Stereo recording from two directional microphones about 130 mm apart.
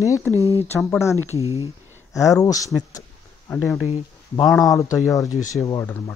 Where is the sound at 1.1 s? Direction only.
25° right (ahead or behind).